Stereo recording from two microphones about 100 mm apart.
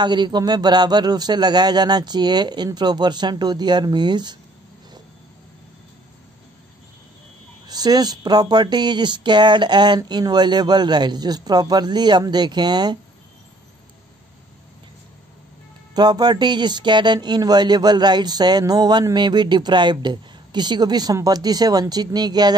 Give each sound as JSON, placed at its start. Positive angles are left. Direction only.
{"t": 0.0, "sound": "a man's voice", "side_deg": -45}
{"t": 7.6, "sound": "a man's voice", "side_deg": -40}
{"t": 15.9, "sound": "a man's voice", "side_deg": -45}